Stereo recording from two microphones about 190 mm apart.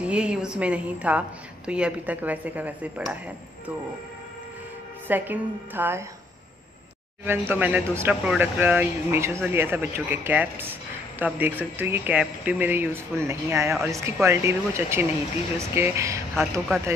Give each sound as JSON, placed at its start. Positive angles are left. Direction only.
{"t": 0.1, "sound": "speech", "side_deg": -5}
{"t": 5.0, "sound": "speech", "side_deg": -10}
{"t": 7.2, "sound": "speech", "side_deg": -10}